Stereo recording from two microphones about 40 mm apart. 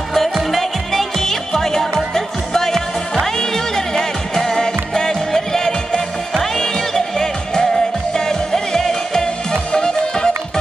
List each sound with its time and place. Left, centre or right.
0.1 s music: centre